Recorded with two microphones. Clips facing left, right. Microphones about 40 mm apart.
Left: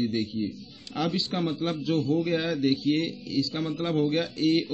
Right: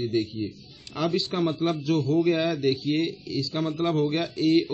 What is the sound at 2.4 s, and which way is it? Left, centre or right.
Speech, centre.